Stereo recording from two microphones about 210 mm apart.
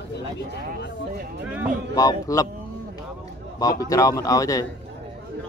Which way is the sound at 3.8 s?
15° left (ahead or behind).